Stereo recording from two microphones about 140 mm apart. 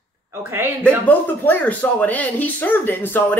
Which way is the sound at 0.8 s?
10° left (ahead or behind).